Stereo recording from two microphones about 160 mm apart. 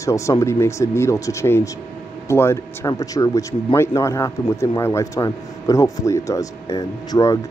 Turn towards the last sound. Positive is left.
turn(degrees=20)  # may be behind; listen again after turning